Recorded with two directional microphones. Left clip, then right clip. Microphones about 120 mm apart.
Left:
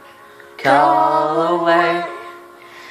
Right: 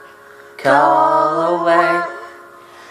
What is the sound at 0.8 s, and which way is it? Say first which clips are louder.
Mantra: right 1 dB; 25° left (ahead or behind).